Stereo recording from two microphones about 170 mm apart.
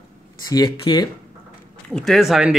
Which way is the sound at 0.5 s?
20° left (ahead or behind).